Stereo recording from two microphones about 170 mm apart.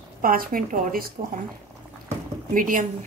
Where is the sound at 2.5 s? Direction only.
55° right (ahead or behind).